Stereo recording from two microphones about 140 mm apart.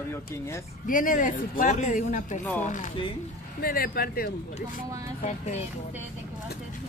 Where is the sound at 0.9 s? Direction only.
70° left (ahead or behind).